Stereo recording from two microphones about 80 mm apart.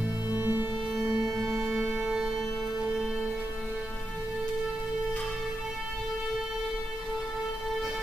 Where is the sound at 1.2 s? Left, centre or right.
Centre.